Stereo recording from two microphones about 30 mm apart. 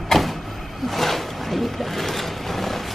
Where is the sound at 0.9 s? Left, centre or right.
Centre.